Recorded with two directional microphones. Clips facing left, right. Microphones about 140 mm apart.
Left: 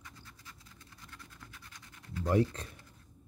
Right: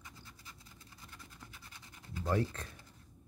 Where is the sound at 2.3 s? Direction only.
20° left (ahead or behind).